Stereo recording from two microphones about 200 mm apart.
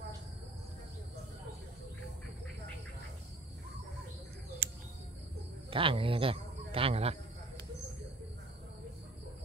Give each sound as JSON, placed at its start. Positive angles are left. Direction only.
{"t": 5.7, "sound": "speech", "side_deg": -25}